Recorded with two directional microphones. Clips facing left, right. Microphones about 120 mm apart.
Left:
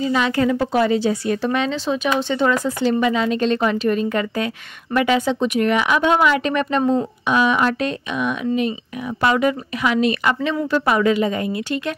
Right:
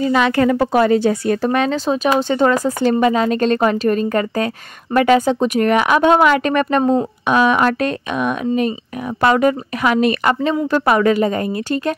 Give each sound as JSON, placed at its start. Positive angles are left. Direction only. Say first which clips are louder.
{"t": 0.0, "sound": "speech", "louder": "right 4 dB", "side_deg": -60}